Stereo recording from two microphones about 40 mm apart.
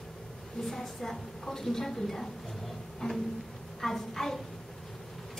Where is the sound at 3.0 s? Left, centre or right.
Centre.